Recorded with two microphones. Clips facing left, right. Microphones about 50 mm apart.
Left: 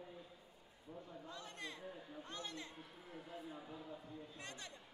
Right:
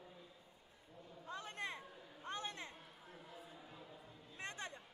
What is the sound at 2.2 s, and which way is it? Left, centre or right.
Speech, right.